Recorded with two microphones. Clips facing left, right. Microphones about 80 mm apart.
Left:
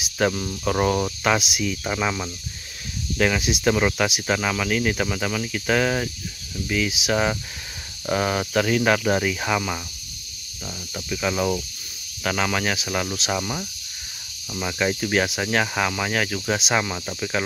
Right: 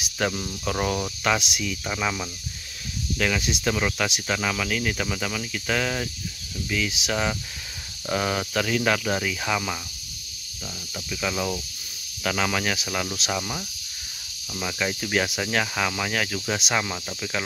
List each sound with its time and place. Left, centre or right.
0.2 s speech: centre
11.1 s speech: centre